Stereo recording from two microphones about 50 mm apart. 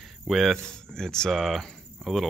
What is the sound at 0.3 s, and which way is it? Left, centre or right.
Speech, centre.